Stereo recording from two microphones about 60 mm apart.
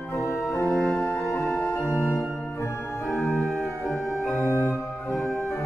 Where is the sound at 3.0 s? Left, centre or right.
Left.